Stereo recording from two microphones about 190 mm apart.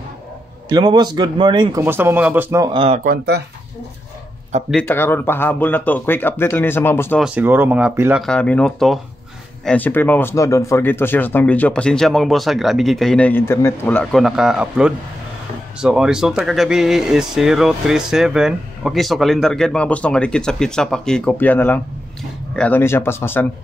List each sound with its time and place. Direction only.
0.7 s speech: 20° right (ahead or behind)
3.0 s speech: 55° right (ahead or behind)
4.6 s speech: 5° left (ahead or behind)
7.2 s speech: 5° right (ahead or behind)
8.2 s speech: 5° left (ahead or behind)